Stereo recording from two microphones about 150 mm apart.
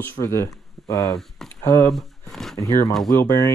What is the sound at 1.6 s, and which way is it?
Speech, 15° left (ahead or behind).